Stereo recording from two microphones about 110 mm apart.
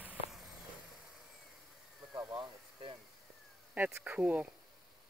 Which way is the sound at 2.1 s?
40° right (ahead or behind).